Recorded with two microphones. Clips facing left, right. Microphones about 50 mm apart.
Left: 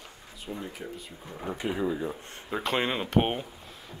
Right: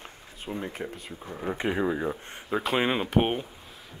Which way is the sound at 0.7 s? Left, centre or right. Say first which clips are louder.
Right 3 dB; right.